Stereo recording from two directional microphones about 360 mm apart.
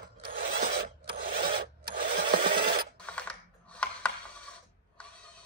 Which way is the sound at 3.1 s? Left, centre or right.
Centre.